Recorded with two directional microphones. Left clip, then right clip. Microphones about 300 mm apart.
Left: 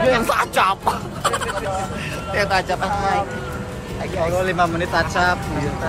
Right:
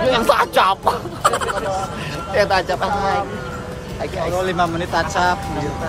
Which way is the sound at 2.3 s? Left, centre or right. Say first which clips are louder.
Right 3 dB; right.